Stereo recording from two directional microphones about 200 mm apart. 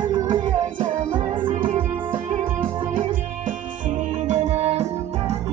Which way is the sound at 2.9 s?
40° right (ahead or behind).